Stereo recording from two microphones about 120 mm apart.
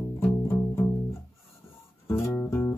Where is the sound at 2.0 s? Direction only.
20° left (ahead or behind).